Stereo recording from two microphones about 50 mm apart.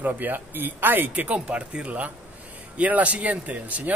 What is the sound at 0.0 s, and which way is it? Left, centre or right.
A man's voice, right.